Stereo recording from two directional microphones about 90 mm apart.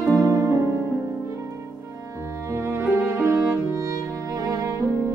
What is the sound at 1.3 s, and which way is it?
Music, 35° right (ahead or behind).